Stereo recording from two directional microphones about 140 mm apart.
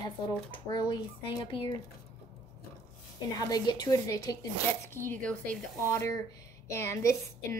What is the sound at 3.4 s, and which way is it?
A woman's voice, 30° left (ahead or behind).